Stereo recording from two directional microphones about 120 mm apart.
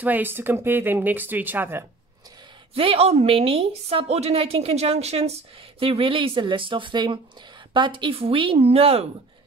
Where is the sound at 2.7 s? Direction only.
55° right (ahead or behind).